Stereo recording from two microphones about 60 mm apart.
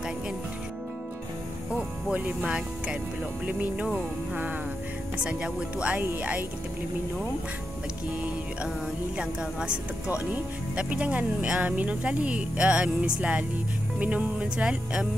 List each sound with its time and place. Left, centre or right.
1.8 s speech: right
5.2 s speech: centre
9.1 s speech: centre